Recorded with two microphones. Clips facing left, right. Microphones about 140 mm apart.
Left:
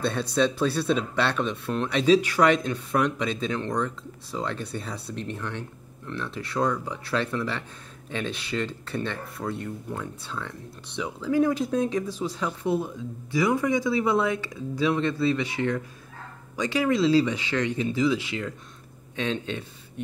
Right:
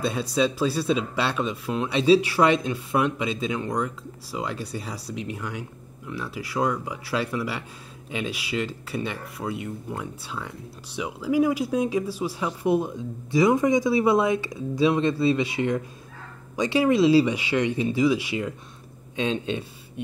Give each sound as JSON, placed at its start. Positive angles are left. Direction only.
{"t": 0.0, "sound": "speech", "side_deg": 0}